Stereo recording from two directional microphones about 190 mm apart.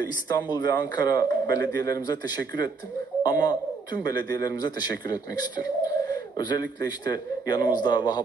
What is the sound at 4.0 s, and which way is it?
A man's voice, 20° left (ahead or behind).